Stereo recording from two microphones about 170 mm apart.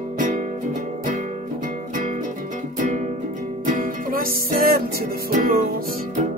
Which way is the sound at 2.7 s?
50° right (ahead or behind).